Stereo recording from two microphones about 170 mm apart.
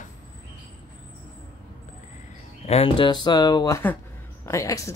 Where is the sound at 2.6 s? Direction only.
35° left (ahead or behind); by 4.9 s 20° left (ahead or behind).